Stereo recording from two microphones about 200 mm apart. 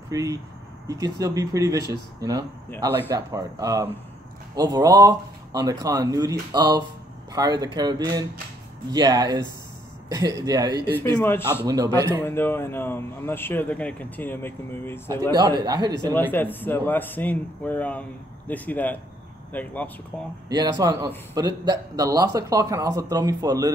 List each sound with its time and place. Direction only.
0.1 s speech: 15° right (ahead or behind)
11.0 s speech: 10° left (ahead or behind)
11.6 s speech: 20° right (ahead or behind)
12.2 s speech: 10° left (ahead or behind)
15.3 s speech: 20° right (ahead or behind)
16.1 s speech: 10° left (ahead or behind)
20.4 s speech: 20° right (ahead or behind)